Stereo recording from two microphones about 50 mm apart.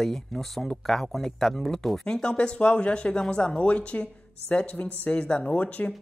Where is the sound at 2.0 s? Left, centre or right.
Centre.